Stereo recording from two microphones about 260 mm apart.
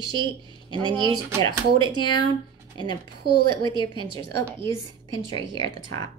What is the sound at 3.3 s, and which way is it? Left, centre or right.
Speech, left.